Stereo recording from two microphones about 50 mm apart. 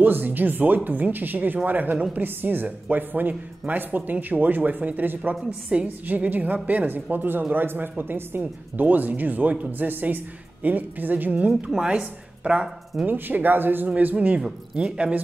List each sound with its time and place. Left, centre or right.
0.0 s a woman's voice: right
11.7 s a woman's voice: centre
13.0 s a woman's voice: right
13.8 s a woman's voice: right
14.4 s speech: centre